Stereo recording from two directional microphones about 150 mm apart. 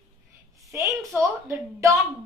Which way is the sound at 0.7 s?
20° right (ahead or behind).